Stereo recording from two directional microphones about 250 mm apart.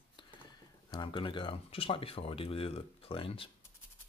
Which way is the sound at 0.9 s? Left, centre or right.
Centre.